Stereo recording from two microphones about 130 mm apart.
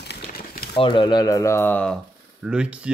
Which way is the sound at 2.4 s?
10° right (ahead or behind).